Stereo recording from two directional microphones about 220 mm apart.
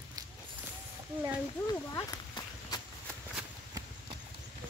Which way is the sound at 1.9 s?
15° left (ahead or behind).